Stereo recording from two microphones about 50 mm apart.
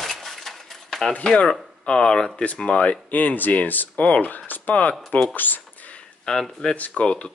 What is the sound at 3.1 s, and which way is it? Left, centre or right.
Speech, left.